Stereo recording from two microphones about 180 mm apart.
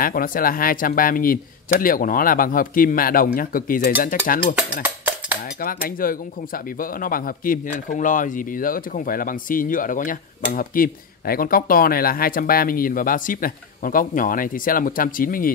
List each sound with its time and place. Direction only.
0.0 s speech: 50° left (ahead or behind)
4.8 s a sound: 10° right (ahead or behind)
5.6 s speech: 50° left (ahead or behind)